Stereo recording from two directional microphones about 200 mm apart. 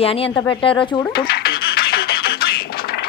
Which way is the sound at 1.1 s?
50° left (ahead or behind).